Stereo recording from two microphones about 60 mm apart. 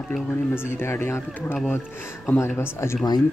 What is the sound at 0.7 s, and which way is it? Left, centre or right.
Speech, left.